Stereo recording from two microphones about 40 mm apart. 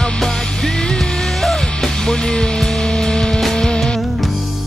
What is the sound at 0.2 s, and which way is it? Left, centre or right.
Music, centre.